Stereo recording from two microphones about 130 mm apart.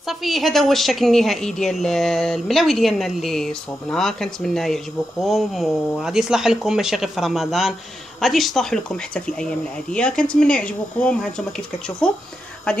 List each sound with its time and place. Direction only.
0.0 s a woman's voice: centre (ahead or behind)